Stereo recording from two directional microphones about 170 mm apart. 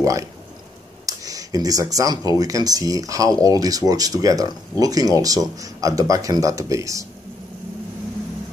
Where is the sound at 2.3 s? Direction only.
20° right (ahead or behind).